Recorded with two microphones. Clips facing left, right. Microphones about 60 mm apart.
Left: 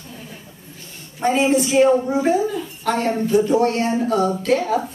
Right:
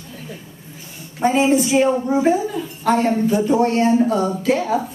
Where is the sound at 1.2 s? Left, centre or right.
Centre.